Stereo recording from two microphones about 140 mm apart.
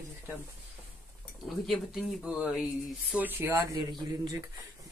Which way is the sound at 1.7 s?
Centre (ahead or behind).